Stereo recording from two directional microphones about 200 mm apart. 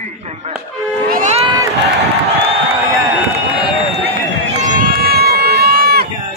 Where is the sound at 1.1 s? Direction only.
35° right (ahead or behind).